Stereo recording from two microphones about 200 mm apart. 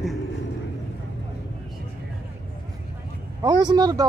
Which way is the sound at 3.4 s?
20° right (ahead or behind).